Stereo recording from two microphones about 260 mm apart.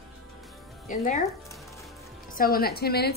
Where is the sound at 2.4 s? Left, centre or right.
Left.